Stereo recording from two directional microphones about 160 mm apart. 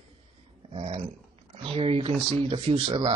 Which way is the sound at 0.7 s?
40° right (ahead or behind).